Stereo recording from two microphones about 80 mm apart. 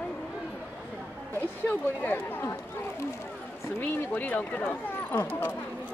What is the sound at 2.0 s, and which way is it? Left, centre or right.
Speech, left.